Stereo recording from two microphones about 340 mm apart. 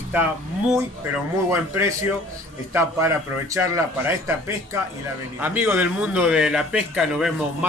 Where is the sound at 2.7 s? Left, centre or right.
Centre.